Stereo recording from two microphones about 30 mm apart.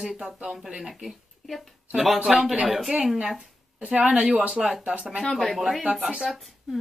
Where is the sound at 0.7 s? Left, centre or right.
Right.